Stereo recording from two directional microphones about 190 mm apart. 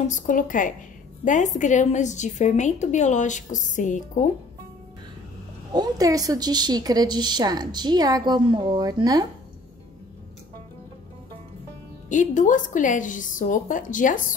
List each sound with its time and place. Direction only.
0.1 s a woman's voice: 45° left (ahead or behind)
5.7 s a woman's voice: 20° right (ahead or behind)
12.1 s a woman's voice: 40° left (ahead or behind)